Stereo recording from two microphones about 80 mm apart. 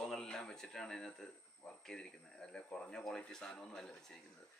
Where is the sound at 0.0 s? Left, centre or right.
Centre.